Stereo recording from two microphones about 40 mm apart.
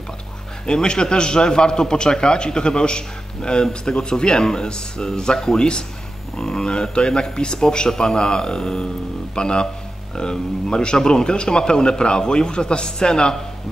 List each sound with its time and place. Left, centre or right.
0.7 s a man's voice: left
6.3 s a man's voice: centre